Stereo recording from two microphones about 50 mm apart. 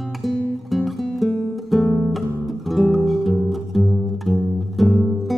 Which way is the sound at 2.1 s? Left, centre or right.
Centre.